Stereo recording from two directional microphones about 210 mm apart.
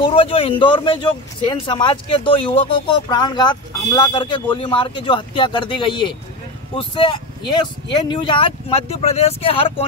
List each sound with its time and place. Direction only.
0.0 s speech: 25° left (ahead or behind)